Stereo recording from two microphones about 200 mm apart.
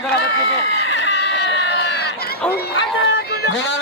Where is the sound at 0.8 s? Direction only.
65° left (ahead or behind).